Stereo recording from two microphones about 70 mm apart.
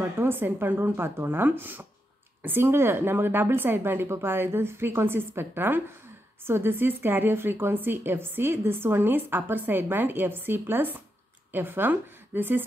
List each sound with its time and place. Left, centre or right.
0.0 s a woman's voice: right